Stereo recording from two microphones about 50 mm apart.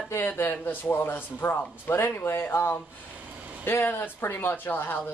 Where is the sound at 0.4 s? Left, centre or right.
Left.